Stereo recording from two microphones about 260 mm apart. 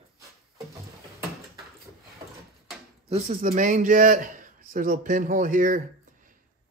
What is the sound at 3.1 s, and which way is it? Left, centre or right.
A man's voice, right.